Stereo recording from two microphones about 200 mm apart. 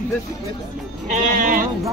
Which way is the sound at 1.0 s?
40° right (ahead or behind).